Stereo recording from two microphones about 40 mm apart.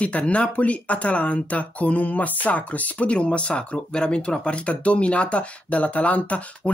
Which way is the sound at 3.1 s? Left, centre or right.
Left.